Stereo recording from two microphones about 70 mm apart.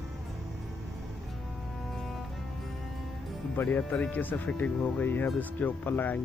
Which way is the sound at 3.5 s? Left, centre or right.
Left.